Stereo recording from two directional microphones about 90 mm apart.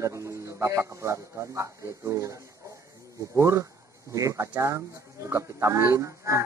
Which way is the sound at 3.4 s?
35° right (ahead or behind).